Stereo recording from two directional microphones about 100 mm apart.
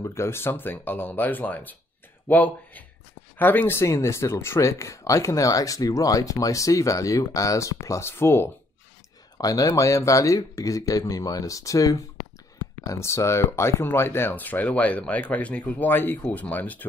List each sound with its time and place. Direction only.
0.0 s speech: 25° left (ahead or behind)
9.4 s speech: 40° left (ahead or behind); by 16.8 s 15° left (ahead or behind)